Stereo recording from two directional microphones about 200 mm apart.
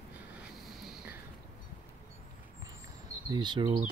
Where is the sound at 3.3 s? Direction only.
20° right (ahead or behind).